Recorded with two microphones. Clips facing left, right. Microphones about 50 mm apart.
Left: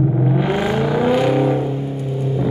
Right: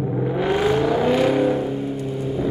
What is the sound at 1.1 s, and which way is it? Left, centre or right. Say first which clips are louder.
Vehicle: left 3 dB; left.